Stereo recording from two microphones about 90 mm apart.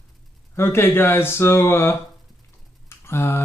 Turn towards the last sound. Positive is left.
turn(degrees=30)  # may be behind; listen again after turning